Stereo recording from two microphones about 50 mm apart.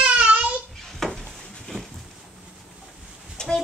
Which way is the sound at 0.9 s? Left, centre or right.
Centre.